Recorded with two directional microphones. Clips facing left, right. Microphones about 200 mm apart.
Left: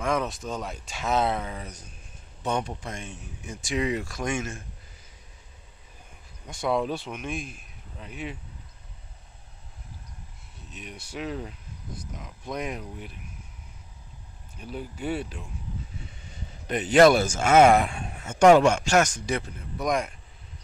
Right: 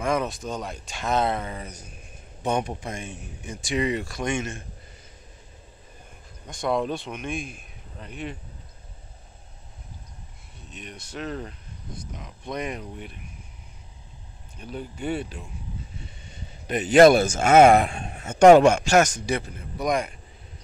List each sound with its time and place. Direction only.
0.0 s speech: centre (ahead or behind)
2.4 s speech: 15° right (ahead or behind); by 4.6 s 5° left (ahead or behind)
6.4 s speech: 5° left (ahead or behind)
10.7 s speech: 5° left (ahead or behind)
14.6 s speech: 5° left (ahead or behind)
16.6 s speech: 10° right (ahead or behind)
17.1 s speech: 50° right (ahead or behind)
18.2 s speech: 40° right (ahead or behind)
19.2 s speech: centre (ahead or behind)